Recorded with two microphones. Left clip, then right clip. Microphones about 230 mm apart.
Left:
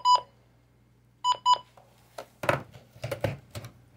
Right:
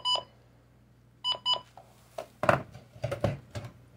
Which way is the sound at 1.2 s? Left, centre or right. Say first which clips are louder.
Left 6 dB; centre.